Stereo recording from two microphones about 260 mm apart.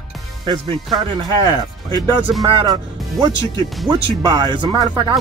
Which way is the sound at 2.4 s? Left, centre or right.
Centre.